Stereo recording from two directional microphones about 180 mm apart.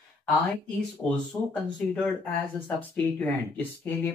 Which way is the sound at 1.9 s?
5° left (ahead or behind).